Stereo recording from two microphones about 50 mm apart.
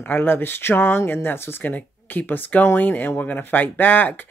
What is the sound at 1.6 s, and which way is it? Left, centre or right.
Speech, left.